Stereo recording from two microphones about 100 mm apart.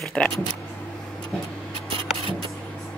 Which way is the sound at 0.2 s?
5° left (ahead or behind).